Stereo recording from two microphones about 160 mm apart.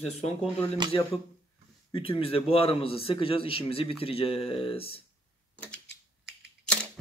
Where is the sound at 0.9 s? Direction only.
30° left (ahead or behind).